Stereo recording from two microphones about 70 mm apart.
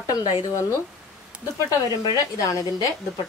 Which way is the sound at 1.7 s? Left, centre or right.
Left.